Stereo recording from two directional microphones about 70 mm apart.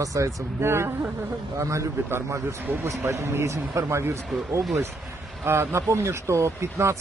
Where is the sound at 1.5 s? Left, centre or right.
Right.